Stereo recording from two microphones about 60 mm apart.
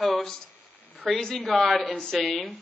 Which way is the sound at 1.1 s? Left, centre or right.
Centre.